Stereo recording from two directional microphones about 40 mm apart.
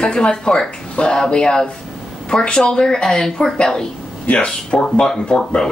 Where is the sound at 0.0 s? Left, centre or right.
Left.